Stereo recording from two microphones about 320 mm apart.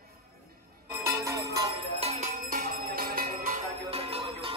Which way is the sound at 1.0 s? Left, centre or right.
Centre.